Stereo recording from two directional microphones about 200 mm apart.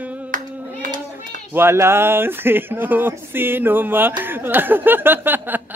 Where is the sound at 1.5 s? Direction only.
10° right (ahead or behind).